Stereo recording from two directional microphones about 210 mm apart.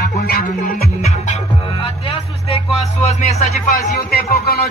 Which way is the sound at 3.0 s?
30° left (ahead or behind).